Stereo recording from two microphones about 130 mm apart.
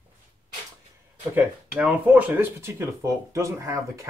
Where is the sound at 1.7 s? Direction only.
10° right (ahead or behind).